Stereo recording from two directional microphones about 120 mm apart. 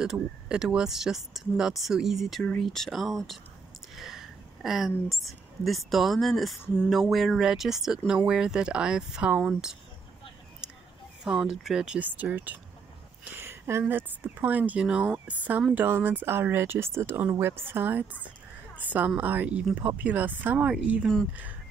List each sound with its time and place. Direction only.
0.0 s speech: 5° right (ahead or behind)
11.2 s speech: 5° right (ahead or behind)